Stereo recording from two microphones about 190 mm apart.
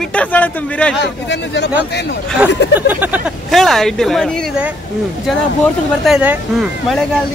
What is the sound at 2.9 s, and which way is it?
Speech, 10° right (ahead or behind).